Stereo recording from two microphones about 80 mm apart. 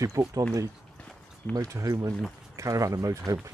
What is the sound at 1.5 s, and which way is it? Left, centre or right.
Speech, right.